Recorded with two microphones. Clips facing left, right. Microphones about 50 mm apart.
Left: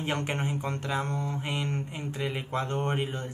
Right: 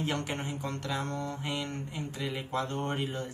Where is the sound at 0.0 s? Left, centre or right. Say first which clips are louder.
Left 3 dB; left.